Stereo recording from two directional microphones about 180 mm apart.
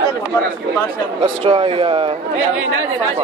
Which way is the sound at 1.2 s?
30° right (ahead or behind).